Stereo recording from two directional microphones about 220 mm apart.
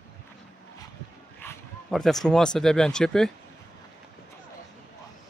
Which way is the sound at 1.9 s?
Centre (ahead or behind).